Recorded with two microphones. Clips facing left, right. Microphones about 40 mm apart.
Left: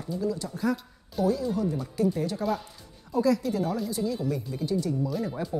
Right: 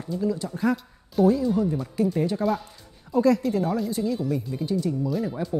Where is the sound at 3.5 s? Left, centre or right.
Right.